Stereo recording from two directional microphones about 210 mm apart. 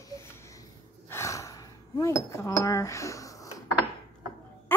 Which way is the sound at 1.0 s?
10° left (ahead or behind).